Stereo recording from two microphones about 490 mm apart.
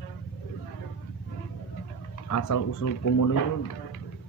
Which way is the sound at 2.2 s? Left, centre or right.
Left.